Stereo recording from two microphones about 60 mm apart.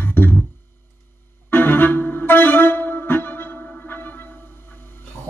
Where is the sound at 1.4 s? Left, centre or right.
Left.